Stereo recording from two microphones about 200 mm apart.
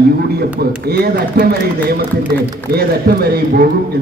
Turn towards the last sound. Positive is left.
turn(degrees=-50)  # may be behind; listen again after turning